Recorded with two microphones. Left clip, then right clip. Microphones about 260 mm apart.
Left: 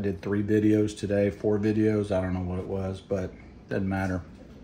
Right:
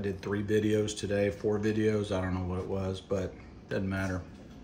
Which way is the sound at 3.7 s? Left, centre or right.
Centre.